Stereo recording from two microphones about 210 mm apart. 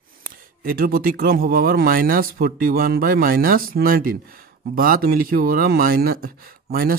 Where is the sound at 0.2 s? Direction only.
45° right (ahead or behind).